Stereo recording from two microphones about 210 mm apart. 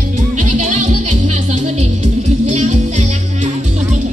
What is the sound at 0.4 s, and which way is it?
Music, 35° right (ahead or behind).